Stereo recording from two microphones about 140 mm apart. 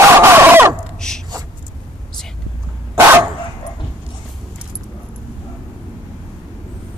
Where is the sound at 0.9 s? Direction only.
5° left (ahead or behind).